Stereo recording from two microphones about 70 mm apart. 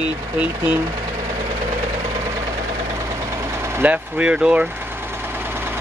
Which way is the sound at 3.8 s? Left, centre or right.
Centre.